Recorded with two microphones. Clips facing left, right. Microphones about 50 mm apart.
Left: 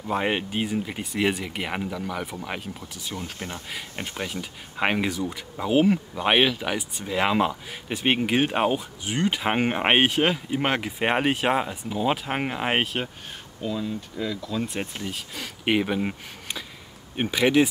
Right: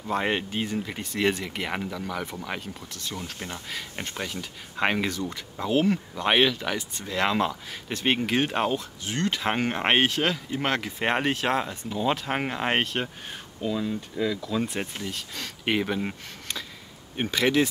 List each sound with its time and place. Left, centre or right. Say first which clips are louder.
0.0 s speech: left 1 dB; centre